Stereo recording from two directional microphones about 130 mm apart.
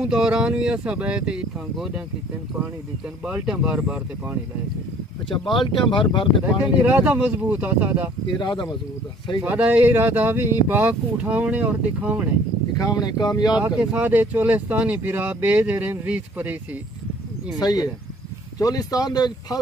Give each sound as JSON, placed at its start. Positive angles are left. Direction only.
{"t": 0.0, "sound": "speech", "side_deg": -5}
{"t": 3.3, "sound": "speech", "side_deg": -10}
{"t": 5.7, "sound": "speech", "side_deg": 40}
{"t": 6.4, "sound": "speech", "side_deg": -10}
{"t": 8.4, "sound": "speech", "side_deg": 35}
{"t": 9.4, "sound": "speech", "side_deg": -10}
{"t": 12.7, "sound": "speech", "side_deg": 30}
{"t": 13.6, "sound": "speech", "side_deg": -10}
{"t": 17.6, "sound": "speech", "side_deg": 30}